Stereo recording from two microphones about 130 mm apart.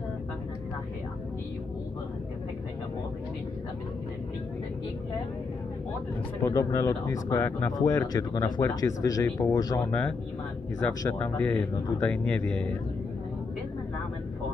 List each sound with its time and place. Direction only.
6.4 s speech: 20° left (ahead or behind)
9.8 s speech: 10° left (ahead or behind)